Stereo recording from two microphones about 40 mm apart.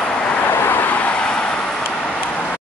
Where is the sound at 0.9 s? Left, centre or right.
Left.